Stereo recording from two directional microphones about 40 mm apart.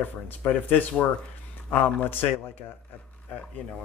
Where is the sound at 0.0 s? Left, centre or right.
Left.